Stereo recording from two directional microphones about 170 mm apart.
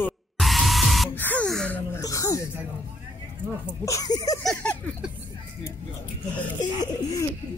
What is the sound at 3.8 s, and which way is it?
Speech, 20° left (ahead or behind).